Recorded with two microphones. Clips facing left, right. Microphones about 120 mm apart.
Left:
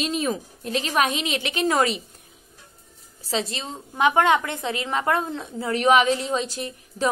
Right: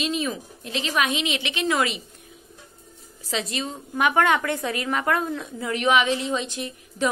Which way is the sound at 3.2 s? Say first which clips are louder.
Left 1 dB; 30° left (ahead or behind).